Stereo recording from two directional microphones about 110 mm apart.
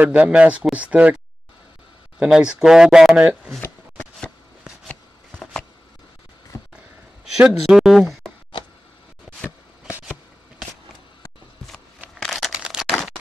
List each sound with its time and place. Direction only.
0.0 s speech: 15° right (ahead or behind)
2.2 s speech: 5° right (ahead or behind)
4.8 s shuffling cards: 5° left (ahead or behind)
6.5 s a sound: 30° left (ahead or behind)
7.3 s speech: 5° right (ahead or behind)
12.2 s crumpling: centre (ahead or behind)